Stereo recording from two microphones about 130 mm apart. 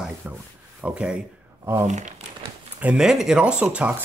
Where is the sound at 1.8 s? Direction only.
65° right (ahead or behind).